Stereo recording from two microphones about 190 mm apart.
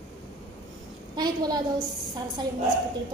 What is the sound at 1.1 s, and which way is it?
Speech, 20° right (ahead or behind).